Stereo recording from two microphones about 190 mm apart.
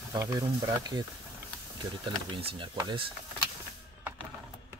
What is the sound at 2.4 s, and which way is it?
Speech, 30° right (ahead or behind).